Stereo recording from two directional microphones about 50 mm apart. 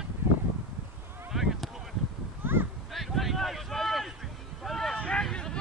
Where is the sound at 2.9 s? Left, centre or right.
Centre.